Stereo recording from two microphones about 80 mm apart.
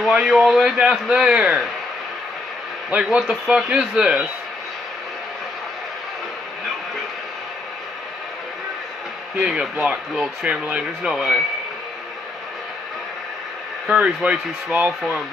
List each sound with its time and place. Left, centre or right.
0.0 s speech: centre
2.9 s speech: centre
9.4 s speech: centre
13.8 s speech: centre